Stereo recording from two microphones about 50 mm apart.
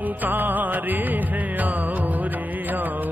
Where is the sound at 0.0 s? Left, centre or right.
Right.